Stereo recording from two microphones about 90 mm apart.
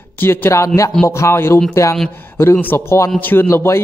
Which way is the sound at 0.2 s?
25° left (ahead or behind).